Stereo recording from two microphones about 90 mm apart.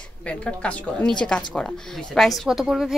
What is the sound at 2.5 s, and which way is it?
Speech, 5° right (ahead or behind).